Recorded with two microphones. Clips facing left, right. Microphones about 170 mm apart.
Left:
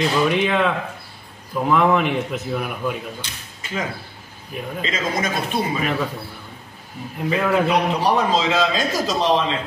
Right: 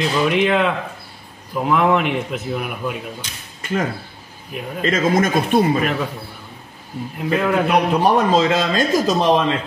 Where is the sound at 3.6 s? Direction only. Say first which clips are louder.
Right 5 dB; 55° right (ahead or behind).